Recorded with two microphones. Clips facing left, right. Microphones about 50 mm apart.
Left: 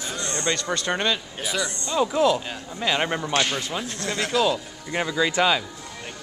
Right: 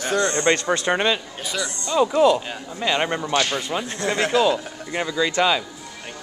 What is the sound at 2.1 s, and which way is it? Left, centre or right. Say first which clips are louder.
Speech: right 4 dB; centre.